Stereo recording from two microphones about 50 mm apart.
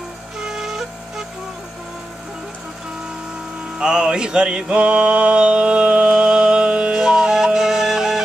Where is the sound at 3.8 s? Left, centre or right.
Centre.